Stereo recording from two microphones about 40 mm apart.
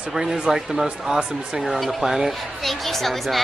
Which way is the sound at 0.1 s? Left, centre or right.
Centre.